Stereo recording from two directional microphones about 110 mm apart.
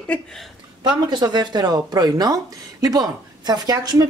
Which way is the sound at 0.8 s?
40° right (ahead or behind).